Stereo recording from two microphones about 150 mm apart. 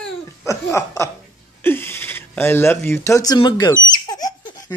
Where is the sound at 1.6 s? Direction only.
15° left (ahead or behind).